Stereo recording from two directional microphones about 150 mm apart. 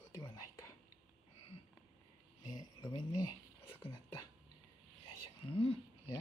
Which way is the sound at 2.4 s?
25° left (ahead or behind).